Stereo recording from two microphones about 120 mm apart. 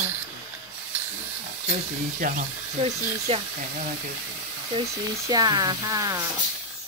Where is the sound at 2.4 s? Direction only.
65° right (ahead or behind).